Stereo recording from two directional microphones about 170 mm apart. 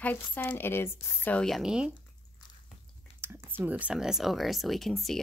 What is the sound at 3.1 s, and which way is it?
Speech, 15° right (ahead or behind).